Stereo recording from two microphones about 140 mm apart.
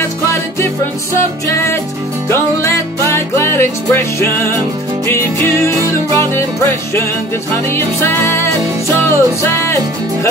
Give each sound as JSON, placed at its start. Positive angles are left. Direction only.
{"t": 2.2, "sound": "music", "side_deg": 20}
{"t": 7.7, "sound": "music", "side_deg": 15}